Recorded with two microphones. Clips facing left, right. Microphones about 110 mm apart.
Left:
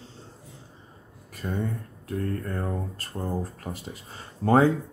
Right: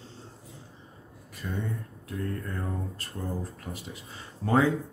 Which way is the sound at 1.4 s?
35° left (ahead or behind).